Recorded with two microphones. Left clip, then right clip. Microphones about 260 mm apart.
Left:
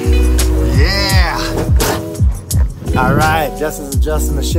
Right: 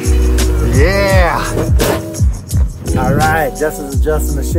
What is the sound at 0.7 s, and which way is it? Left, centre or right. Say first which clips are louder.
Music: right 6 dB; centre.